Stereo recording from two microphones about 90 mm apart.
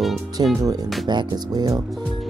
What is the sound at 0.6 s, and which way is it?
Speech, 45° right (ahead or behind).